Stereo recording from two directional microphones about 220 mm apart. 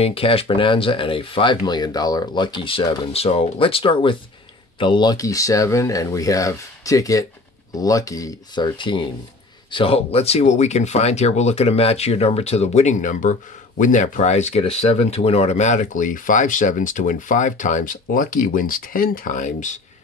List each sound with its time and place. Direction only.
0.0 s speech: 25° left (ahead or behind)